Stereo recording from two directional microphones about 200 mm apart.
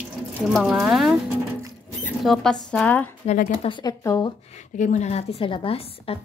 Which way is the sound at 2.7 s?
5° left (ahead or behind).